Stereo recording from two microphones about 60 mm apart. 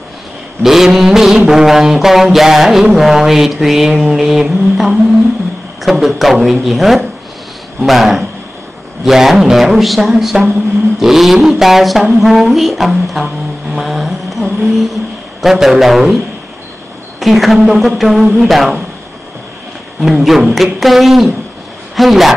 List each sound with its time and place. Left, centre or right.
0.6 s mantra: centre
17.2 s mantra: centre
20.1 s mantra: centre